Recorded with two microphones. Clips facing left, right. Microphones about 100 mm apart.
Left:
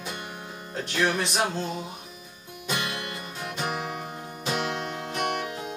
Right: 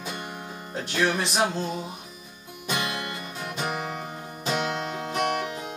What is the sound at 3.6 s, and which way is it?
Music, 5° left (ahead or behind).